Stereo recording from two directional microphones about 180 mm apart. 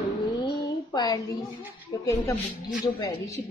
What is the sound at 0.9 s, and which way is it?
A woman's voice, 20° left (ahead or behind).